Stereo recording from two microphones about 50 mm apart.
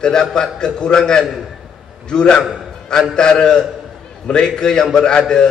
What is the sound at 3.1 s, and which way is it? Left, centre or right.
A man's voice, centre.